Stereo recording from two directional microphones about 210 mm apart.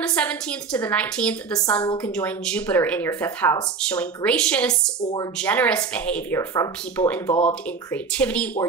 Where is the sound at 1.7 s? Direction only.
20° left (ahead or behind).